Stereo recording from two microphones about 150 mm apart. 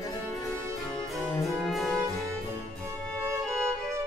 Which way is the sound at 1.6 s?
Centre (ahead or behind).